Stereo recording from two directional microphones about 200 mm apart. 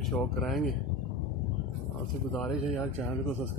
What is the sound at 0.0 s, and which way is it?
Speech, centre (ahead or behind).